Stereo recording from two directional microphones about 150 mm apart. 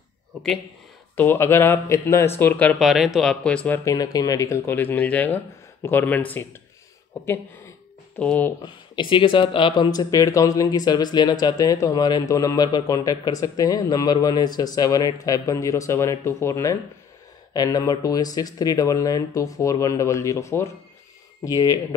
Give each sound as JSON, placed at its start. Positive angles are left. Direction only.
{"t": 1.1, "sound": "speech", "side_deg": 15}
{"t": 8.2, "sound": "speech", "side_deg": 10}
{"t": 9.1, "sound": "speech", "side_deg": 35}